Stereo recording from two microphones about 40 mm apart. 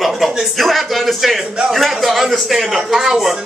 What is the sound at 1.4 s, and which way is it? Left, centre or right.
Speech, right.